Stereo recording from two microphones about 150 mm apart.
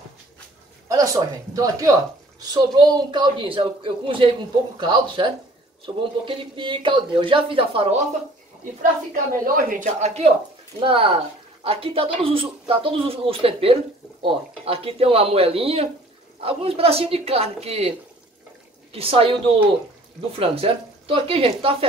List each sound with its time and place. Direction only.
0.8 s a man's voice: 20° right (ahead or behind); by 7.9 s 40° right (ahead or behind)
9.5 s speech: 65° right (ahead or behind); by 10.3 s 50° right (ahead or behind)
10.8 s a man's voice: 35° right (ahead or behind)
20.3 s a man's voice: 40° right (ahead or behind)